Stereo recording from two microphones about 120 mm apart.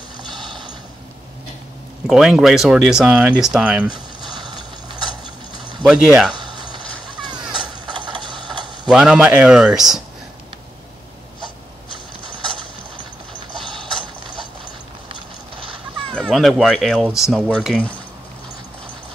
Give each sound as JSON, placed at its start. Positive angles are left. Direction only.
{"t": 0.2, "sound": "mechanisms", "side_deg": -40}
{"t": 2.0, "sound": "speech", "side_deg": 0}
{"t": 4.3, "sound": "vehicle", "side_deg": -40}
{"t": 5.9, "sound": "speech", "side_deg": -5}
{"t": 6.3, "sound": "music", "side_deg": -40}
{"t": 7.8, "sound": "a sound", "side_deg": -40}
{"t": 8.8, "sound": "a man's voice", "side_deg": -5}
{"t": 16.2, "sound": "speech", "side_deg": 0}